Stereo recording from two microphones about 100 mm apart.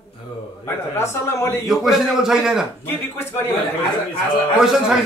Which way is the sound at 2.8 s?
25° left (ahead or behind).